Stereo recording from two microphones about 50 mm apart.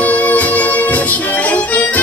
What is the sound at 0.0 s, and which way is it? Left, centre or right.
Music, left.